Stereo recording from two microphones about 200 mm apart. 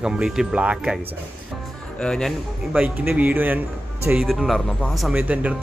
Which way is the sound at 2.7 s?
5° right (ahead or behind).